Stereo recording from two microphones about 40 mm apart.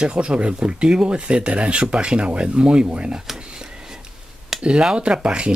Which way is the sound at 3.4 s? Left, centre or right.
Right.